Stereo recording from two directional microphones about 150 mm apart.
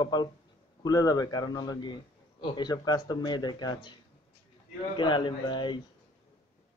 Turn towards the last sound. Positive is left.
turn(degrees=30)  # may be behind; listen again after turning